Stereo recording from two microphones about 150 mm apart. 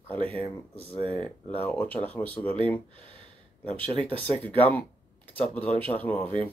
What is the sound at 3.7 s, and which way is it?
Speech, 35° right (ahead or behind).